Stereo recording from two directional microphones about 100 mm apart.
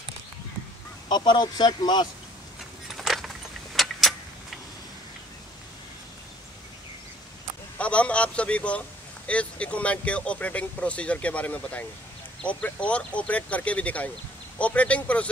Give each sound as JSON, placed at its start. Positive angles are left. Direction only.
{"t": 1.0, "sound": "speech", "side_deg": 50}
{"t": 2.9, "sound": "a sound", "side_deg": 0}
{"t": 3.7, "sound": "vehicle", "side_deg": 0}
{"t": 7.8, "sound": "speech", "side_deg": 10}